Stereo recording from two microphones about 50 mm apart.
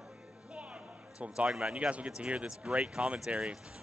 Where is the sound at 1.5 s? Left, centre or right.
Centre.